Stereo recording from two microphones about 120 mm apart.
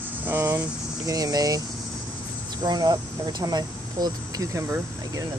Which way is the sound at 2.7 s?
35° right (ahead or behind).